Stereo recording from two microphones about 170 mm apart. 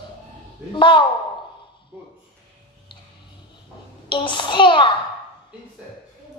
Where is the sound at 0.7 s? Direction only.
30° left (ahead or behind).